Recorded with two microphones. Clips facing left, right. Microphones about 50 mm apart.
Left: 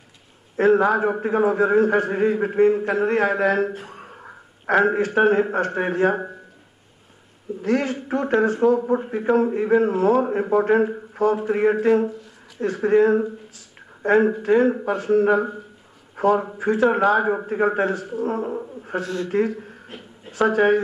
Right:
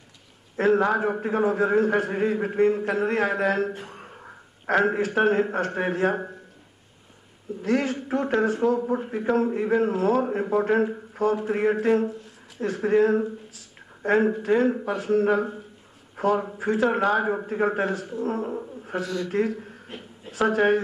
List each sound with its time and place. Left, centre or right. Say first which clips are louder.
0.6 s a man's voice: left 4 dB; centre
3.7 s a sound: left 2 dB; centre
4.7 s a man's voice: left 4 dB; centre
7.7 s a man's voice: left 2 dB; centre
18.9 s speech: left 2 dB; left
19.3 s a man's voice: left 4 dB; centre
19.9 s a sound: even; centre